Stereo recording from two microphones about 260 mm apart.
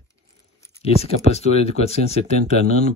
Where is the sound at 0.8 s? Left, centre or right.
Left.